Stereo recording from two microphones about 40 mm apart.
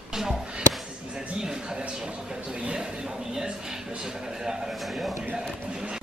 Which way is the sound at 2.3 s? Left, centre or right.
Right.